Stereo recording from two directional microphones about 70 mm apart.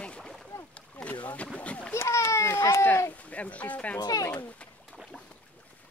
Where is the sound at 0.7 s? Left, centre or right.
Centre.